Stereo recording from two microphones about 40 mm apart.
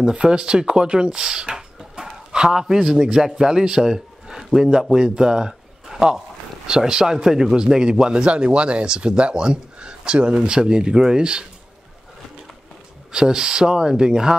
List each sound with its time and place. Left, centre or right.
0.0 s speech: centre
1.5 s a sound: centre
2.7 s speech: centre
13.1 s speech: centre